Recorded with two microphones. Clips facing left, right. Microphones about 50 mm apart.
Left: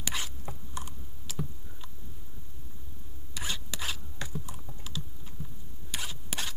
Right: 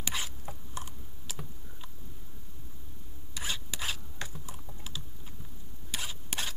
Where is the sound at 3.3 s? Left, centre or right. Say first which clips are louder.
Even; centre.